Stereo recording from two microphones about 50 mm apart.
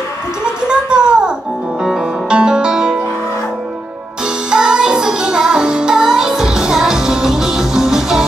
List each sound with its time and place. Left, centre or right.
0.7 s a sound: centre
1.9 s music: centre
4.5 s music: centre